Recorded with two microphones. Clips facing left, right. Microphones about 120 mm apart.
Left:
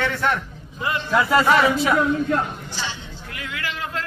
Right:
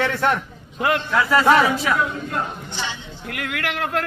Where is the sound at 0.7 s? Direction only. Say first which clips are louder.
Right 5 dB; 85° right.